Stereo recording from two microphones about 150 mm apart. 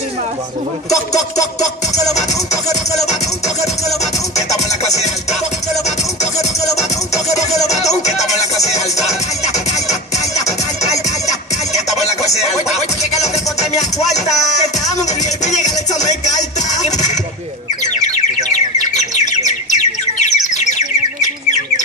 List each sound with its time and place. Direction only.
0.8 s music: 25° left (ahead or behind)
3.0 s music: 50° left (ahead or behind)
7.7 s music: 50° left (ahead or behind)
8.5 s music: 20° left (ahead or behind)
9.0 s music: 50° left (ahead or behind)
9.8 s music: 20° left (ahead or behind)
11.7 s music: 50° left (ahead or behind)
14.2 s music: 25° left (ahead or behind)
14.9 s music: 50° left (ahead or behind)
18.9 s bird: 50° left (ahead or behind)